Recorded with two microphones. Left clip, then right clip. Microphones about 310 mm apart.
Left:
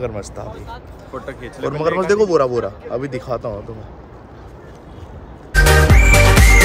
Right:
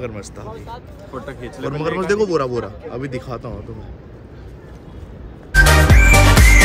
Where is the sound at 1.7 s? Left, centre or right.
Centre.